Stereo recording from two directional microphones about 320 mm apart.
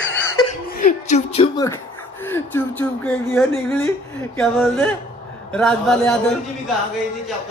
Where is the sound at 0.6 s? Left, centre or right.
Left.